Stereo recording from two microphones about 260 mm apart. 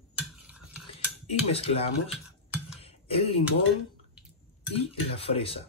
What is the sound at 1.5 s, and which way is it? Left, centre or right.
Speech, left.